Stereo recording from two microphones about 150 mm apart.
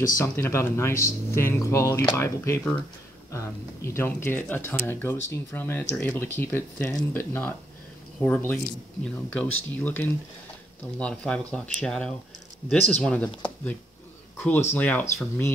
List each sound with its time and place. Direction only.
0.2 s speech: 15° left (ahead or behind)
14.3 s speech: 15° left (ahead or behind)